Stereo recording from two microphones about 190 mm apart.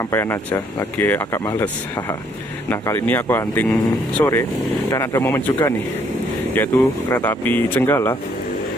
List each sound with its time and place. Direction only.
0.1 s speech: 15° left (ahead or behind)